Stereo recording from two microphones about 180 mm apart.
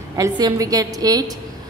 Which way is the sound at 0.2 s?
20° right (ahead or behind).